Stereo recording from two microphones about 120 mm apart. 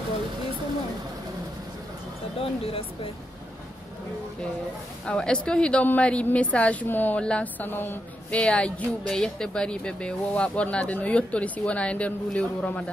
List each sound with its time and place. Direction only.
2.6 s speech: 50° left (ahead or behind)
5.0 s a woman's voice: 10° left (ahead or behind)